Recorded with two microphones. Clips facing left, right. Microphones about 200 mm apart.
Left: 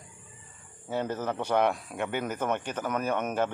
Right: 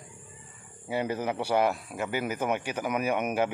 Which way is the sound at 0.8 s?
10° right (ahead or behind).